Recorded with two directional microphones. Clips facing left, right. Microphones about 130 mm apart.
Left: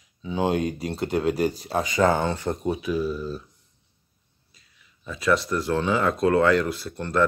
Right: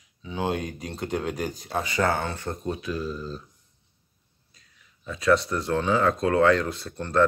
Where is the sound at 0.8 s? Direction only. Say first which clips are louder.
Left 5 dB; 30° left (ahead or behind).